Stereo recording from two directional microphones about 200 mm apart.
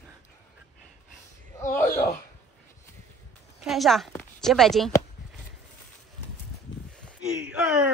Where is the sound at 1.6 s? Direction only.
10° left (ahead or behind).